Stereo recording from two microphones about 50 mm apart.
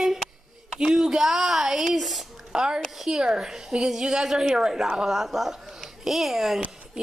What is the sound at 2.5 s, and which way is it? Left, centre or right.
Speech, centre.